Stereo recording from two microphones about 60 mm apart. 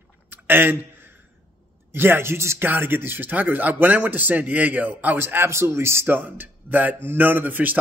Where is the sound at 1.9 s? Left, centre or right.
Right.